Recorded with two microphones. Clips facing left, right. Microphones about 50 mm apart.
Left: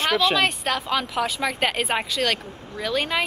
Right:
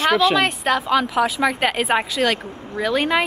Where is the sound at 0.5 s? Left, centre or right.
Centre.